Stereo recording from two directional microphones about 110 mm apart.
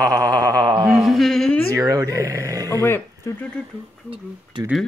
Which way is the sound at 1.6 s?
30° right (ahead or behind).